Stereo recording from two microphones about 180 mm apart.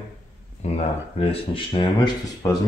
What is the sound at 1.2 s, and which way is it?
Speech, 30° left (ahead or behind).